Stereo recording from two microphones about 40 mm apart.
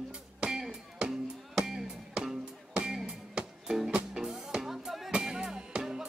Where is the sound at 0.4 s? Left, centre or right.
Centre.